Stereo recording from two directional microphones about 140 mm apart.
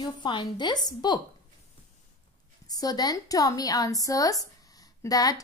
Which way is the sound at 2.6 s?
25° left (ahead or behind).